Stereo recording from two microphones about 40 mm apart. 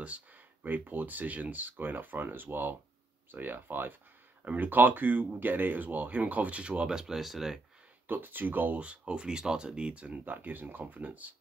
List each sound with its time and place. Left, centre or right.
0.7 s speech: right
6.9 s speech: centre
7.2 s speech: centre
8.1 s speech: right
8.8 s speech: right
10.2 s speech: right
10.8 s speech: right